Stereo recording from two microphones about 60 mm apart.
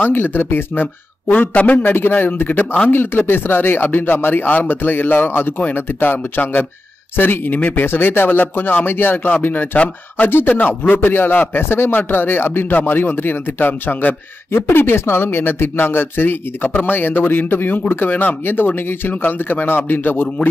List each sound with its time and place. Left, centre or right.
0.0 s speech: left
1.3 s speech: left
2.9 s speech: left